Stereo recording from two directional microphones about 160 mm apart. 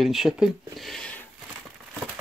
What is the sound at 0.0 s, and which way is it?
Speech, centre (ahead or behind).